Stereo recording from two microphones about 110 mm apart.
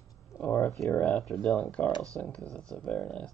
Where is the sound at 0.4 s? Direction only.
20° left (ahead or behind).